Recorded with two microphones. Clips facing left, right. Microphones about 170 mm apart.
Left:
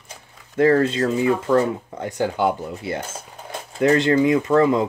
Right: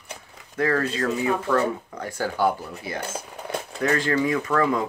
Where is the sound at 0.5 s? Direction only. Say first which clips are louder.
Left 7 dB; 25° left (ahead or behind).